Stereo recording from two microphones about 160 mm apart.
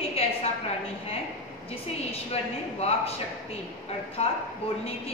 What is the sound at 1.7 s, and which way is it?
A man's voice, 40° left (ahead or behind).